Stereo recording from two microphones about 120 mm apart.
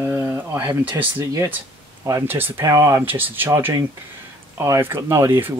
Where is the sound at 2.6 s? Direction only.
30° right (ahead or behind).